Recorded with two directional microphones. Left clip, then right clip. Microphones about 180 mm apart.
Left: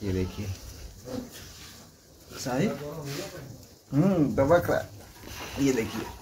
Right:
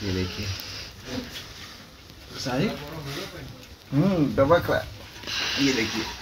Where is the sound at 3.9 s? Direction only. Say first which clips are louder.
Right 2 dB; 5° right (ahead or behind).